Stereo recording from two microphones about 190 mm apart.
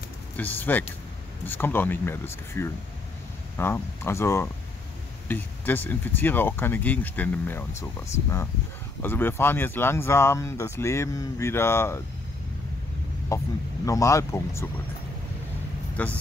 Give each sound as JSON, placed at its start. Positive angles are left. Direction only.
{"t": 0.4, "sound": "speech", "side_deg": 10}
{"t": 13.3, "sound": "speech", "side_deg": 15}
{"t": 16.0, "sound": "speech", "side_deg": 10}